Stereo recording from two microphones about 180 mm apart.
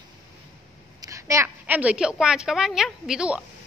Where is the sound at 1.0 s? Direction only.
15° right (ahead or behind).